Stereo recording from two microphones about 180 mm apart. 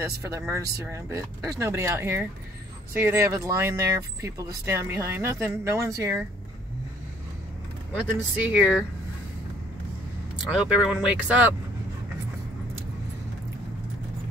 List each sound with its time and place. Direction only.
0.2 s speech: 15° right (ahead or behind)
8.5 s speech: 5° right (ahead or behind)
10.3 s speech: 5° right (ahead or behind)